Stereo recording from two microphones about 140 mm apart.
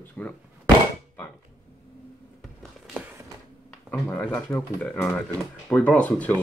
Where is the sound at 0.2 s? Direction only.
10° left (ahead or behind).